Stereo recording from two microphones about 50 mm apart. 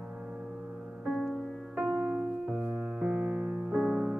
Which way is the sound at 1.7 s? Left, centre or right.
Right.